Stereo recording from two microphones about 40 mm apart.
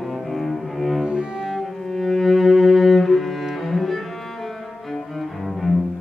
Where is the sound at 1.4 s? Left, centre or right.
Centre.